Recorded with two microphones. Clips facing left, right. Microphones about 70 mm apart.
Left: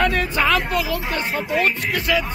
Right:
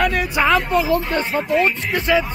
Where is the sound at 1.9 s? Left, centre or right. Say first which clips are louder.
Right 3 dB; centre.